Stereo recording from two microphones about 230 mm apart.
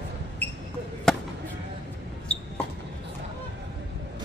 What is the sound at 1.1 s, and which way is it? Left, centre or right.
Fireworks, centre.